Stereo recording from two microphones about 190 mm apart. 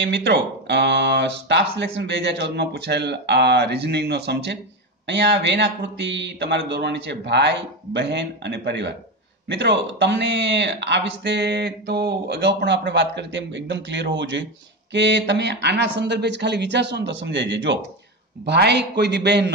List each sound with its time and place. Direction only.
0.0 s speech: 65° right (ahead or behind)